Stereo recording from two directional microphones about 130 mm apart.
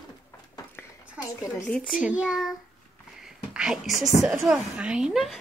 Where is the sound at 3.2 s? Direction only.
5° right (ahead or behind).